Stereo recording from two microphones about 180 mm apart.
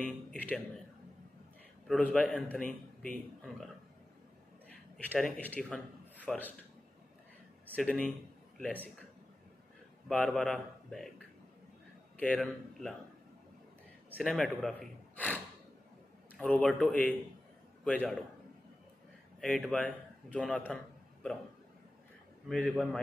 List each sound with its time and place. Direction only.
0.0 s a man's voice: 5° left (ahead or behind)
1.9 s a man's voice: 5° left (ahead or behind)
4.9 s a man's voice: 5° left (ahead or behind)
7.7 s a man's voice: 5° left (ahead or behind)
10.0 s a man's voice: centre (ahead or behind)
14.1 s a man's voice: 5° left (ahead or behind)
19.4 s a man's voice: 5° left (ahead or behind)
22.5 s a man's voice: 5° left (ahead or behind)